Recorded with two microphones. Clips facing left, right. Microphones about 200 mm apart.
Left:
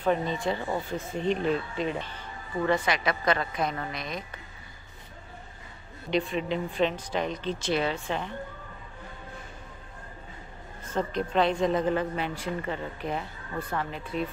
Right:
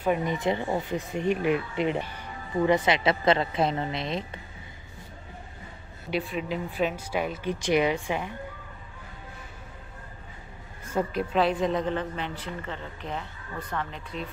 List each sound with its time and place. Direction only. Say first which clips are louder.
0.0 s speech: right 1 dB; 15° right (ahead or behind)
6.0 s speech: left 2 dB; 5° right (ahead or behind)
10.9 s speech: right 1 dB; 5° right (ahead or behind)